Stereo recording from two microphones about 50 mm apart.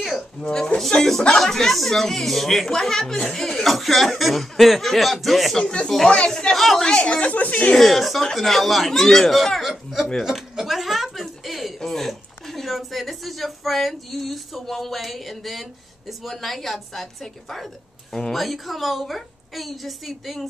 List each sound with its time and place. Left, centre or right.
0.0 s a sound: centre
0.5 s speech: centre
5.6 s a woman's voice: centre
6.5 s speech: centre
6.8 s a woman's voice: centre
7.7 s speech: centre